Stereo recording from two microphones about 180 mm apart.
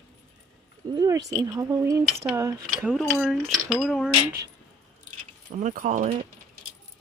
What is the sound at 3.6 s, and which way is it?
Speech, centre (ahead or behind).